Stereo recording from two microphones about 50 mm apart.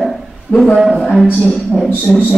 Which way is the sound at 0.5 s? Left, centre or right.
Left.